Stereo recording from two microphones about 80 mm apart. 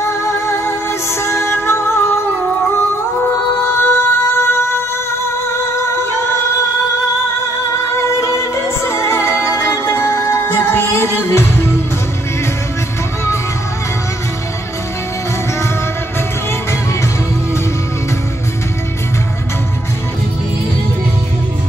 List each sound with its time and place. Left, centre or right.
0.0 s music: left
3.2 s music: left
5.9 s music: left
7.7 s music: left